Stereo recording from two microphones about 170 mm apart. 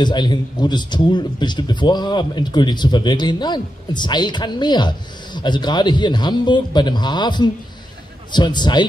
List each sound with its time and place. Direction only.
0.0 s a man's voice: 25° left (ahead or behind)